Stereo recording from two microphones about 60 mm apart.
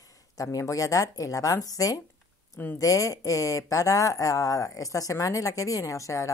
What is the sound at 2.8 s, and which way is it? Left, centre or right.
Speech, left.